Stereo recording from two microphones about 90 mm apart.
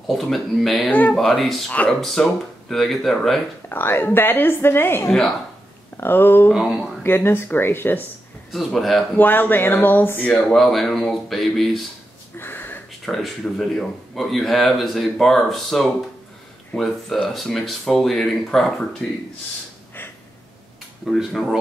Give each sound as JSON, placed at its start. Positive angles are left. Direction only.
{"t": 0.1, "sound": "speech", "side_deg": 0}
{"t": 0.8, "sound": "a woman's voice", "side_deg": 20}
{"t": 1.1, "sound": "speech", "side_deg": 0}
{"t": 3.6, "sound": "a woman's voice", "side_deg": 25}
{"t": 6.5, "sound": "speech", "side_deg": -10}
{"t": 7.0, "sound": "a woman's voice", "side_deg": 25}
{"t": 8.5, "sound": "speech", "side_deg": 0}
{"t": 9.1, "sound": "a woman's voice", "side_deg": 20}
{"t": 10.5, "sound": "speech", "side_deg": 0}
{"t": 12.4, "sound": "a sound", "side_deg": 25}
{"t": 13.0, "sound": "speech", "side_deg": 5}
{"t": 21.0, "sound": "speech", "side_deg": 0}